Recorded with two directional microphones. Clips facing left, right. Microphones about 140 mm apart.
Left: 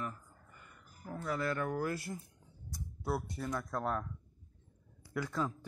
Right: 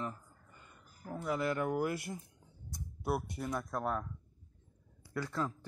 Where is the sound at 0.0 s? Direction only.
25° right (ahead or behind).